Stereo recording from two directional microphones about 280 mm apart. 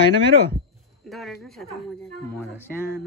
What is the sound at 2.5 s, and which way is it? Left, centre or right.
Mantra, centre.